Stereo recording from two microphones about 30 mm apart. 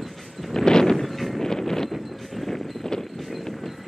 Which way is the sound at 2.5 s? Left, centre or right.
Centre.